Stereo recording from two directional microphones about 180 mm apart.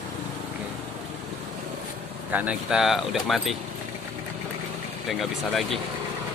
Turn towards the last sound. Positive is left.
turn(degrees=0)  # may be behind; listen again after turning